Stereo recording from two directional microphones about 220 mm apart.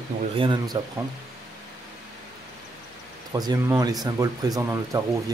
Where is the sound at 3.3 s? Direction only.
15° right (ahead or behind).